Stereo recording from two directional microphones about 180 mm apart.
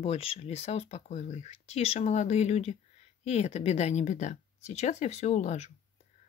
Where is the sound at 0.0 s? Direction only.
35° left (ahead or behind).